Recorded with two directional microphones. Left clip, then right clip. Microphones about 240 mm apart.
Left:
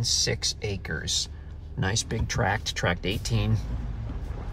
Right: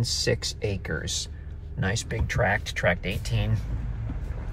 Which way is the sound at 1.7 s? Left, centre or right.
Centre.